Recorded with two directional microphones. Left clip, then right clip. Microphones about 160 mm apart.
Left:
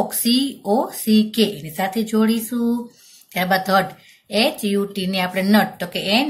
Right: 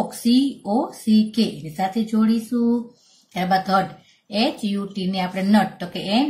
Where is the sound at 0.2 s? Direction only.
40° left (ahead or behind).